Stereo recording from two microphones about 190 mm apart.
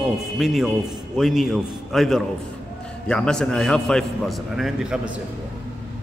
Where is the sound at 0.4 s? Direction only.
Centre (ahead or behind).